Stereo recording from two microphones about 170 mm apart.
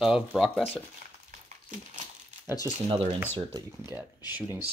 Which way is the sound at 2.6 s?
30° right (ahead or behind).